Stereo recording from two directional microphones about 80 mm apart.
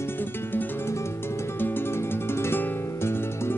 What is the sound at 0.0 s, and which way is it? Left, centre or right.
Music, left.